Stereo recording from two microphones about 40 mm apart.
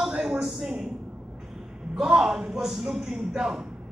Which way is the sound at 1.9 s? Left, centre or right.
Centre.